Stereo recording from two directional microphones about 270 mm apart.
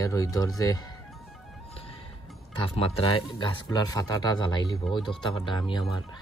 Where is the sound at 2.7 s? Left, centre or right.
Left.